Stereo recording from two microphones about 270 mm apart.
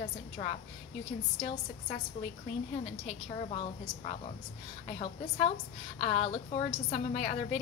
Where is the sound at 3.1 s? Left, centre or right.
Left.